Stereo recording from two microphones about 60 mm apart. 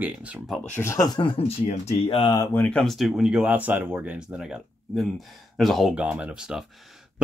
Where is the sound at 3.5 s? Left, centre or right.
Right.